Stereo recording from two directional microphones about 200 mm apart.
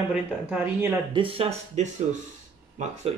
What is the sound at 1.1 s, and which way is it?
Speech, 25° right (ahead or behind).